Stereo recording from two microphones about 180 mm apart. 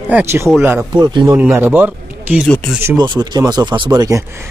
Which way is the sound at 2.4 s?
5° left (ahead or behind).